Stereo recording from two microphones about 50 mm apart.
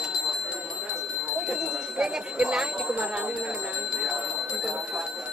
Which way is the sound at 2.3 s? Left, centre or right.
Centre.